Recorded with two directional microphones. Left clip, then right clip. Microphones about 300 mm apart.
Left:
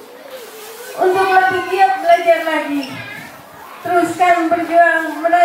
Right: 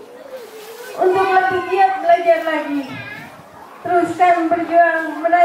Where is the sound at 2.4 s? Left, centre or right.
Centre.